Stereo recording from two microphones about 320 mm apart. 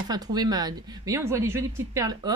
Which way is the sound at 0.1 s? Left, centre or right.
Centre.